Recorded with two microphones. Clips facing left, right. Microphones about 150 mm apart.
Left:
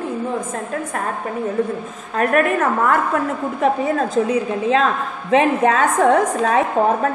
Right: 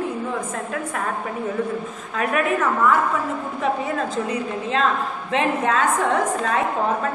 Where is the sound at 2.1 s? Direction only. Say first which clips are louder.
Left 5 dB; 50° left (ahead or behind).